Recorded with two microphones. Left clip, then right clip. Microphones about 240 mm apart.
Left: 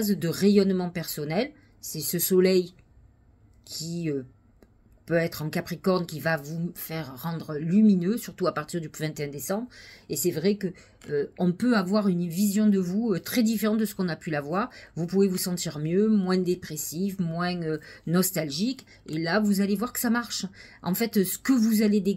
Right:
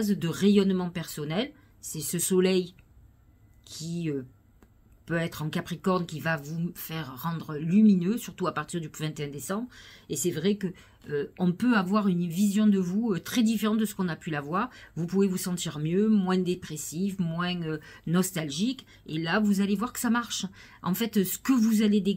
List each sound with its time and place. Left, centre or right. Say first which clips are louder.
0.1 s speech: left 3 dB; centre
1.9 s speech: left 3 dB; right
2.1 s speech: left 3 dB; centre
5.0 s speech: left 5 dB; centre
18.4 s speech: left 2 dB; right
18.8 s speech: left 2 dB; centre